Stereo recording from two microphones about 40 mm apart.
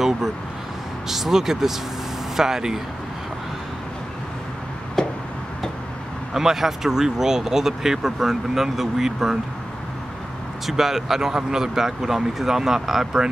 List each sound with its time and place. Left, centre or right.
1.0 s speech: centre
5.0 s a sound: centre
6.3 s speech: centre
10.7 s speech: centre